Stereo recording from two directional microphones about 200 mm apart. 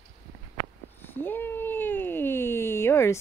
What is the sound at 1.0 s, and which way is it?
Speech, 10° left (ahead or behind).